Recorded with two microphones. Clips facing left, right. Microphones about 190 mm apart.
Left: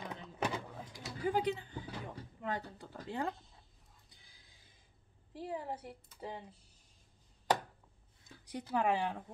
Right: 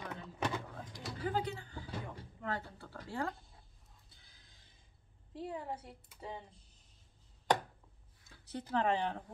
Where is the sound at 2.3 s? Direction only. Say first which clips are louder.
Left 1 dB; 15° left (ahead or behind).